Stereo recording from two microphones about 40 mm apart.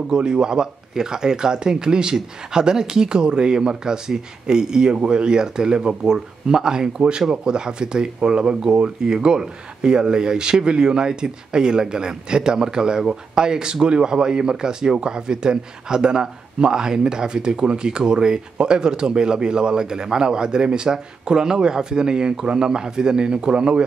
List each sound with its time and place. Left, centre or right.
0.1 s speech: centre